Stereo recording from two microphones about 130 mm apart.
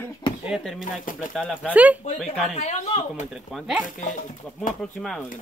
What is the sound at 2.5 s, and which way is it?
Speech, 60° left (ahead or behind).